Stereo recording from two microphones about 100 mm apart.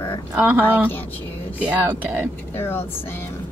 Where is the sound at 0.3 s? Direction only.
15° right (ahead or behind).